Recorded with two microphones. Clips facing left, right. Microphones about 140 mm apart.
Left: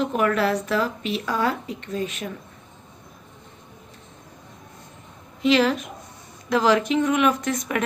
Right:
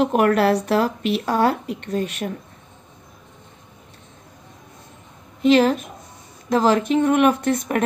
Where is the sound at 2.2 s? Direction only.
40° right (ahead or behind).